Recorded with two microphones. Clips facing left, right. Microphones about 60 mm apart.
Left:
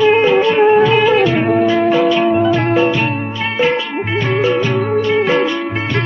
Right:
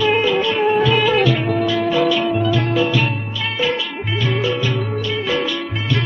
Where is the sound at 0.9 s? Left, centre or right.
Centre.